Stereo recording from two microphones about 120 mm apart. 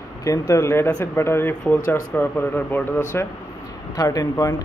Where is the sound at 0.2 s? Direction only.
25° left (ahead or behind).